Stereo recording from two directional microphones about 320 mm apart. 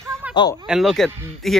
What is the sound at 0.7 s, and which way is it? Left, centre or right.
Speech, centre.